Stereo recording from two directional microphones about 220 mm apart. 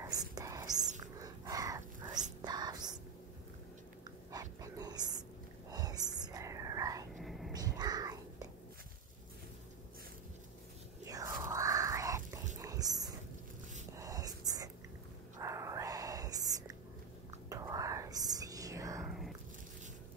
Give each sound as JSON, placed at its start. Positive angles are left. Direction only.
{"t": 0.0, "sound": "whispering", "side_deg": -15}
{"t": 1.2, "sound": "dog", "side_deg": -15}
{"t": 2.4, "sound": "a sound", "side_deg": -20}
{"t": 4.3, "sound": "dog", "side_deg": -15}
{"t": 5.7, "sound": "whispering", "side_deg": -15}
{"t": 7.2, "sound": "whispering", "side_deg": 0}
{"t": 7.5, "sound": "whispering", "side_deg": -15}
{"t": 11.1, "sound": "a sound", "side_deg": -15}
{"t": 13.9, "sound": "whispering", "side_deg": -15}
{"t": 19.0, "sound": "biting", "side_deg": 0}